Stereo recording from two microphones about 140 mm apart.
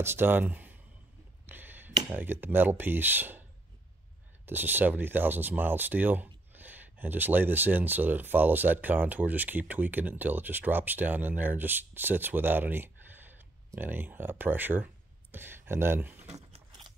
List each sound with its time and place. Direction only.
0.0 s speech: 15° right (ahead or behind)
1.4 s a sound: 15° right (ahead or behind)
2.0 s speech: 15° right (ahead or behind)
4.5 s speech: 15° right (ahead or behind)
16.3 s crunch: 50° right (ahead or behind)